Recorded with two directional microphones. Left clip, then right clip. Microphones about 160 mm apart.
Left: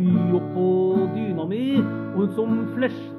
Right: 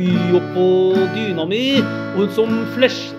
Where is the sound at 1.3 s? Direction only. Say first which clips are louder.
Right 7 dB; 10° right (ahead or behind).